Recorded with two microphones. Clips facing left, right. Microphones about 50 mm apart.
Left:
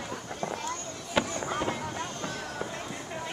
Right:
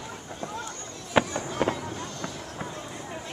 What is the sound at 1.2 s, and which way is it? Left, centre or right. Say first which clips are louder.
Fireworks: right 4 dB; right.